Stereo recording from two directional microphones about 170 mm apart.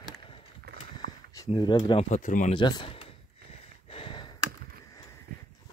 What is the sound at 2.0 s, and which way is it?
Speech, 45° left (ahead or behind).